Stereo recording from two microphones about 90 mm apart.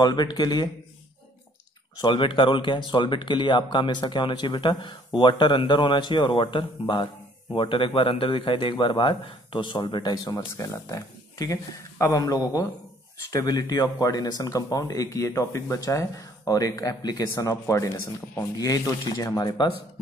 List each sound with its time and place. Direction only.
0.0 s speech: 50° left (ahead or behind)
2.0 s speech: 60° left (ahead or behind)
10.1 s speech: 40° left (ahead or behind)